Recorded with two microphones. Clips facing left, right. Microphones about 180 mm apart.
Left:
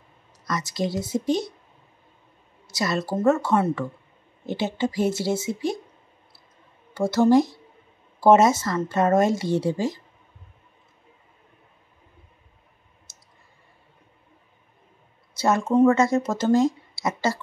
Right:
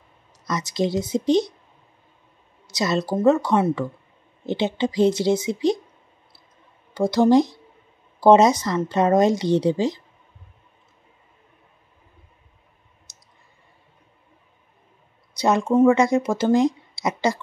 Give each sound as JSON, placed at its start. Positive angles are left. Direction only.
{"t": 0.5, "sound": "a woman's voice", "side_deg": -20}
{"t": 2.7, "sound": "speech", "side_deg": -20}
{"t": 6.9, "sound": "speech", "side_deg": -15}
{"t": 15.3, "sound": "a sound", "side_deg": -15}
{"t": 15.7, "sound": "speech", "side_deg": -10}